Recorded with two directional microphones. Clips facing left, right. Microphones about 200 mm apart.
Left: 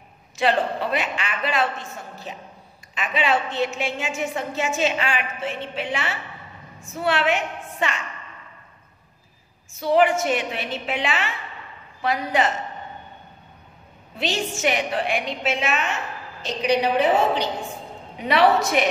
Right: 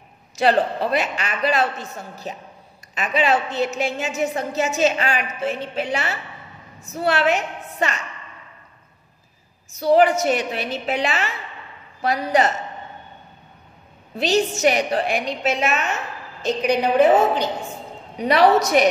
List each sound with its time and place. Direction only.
0.4 s a woman's voice: 40° right (ahead or behind)
9.7 s a woman's voice: 40° right (ahead or behind)
14.1 s a woman's voice: 40° right (ahead or behind)